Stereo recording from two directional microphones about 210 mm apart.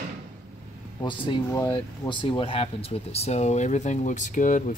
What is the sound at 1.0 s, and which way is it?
Speech, 20° left (ahead or behind).